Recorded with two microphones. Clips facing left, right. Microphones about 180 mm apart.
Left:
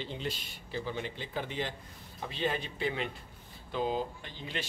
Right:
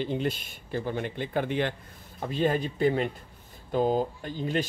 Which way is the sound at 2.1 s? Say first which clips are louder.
Right 7 dB; 45° right (ahead or behind).